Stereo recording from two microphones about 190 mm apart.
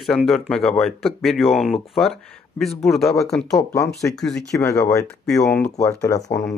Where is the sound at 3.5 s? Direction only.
15° left (ahead or behind).